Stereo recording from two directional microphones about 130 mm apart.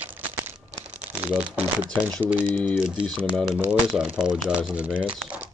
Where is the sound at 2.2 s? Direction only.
10° right (ahead or behind).